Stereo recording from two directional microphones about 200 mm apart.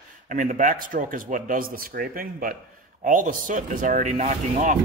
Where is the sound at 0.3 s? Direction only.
40° right (ahead or behind).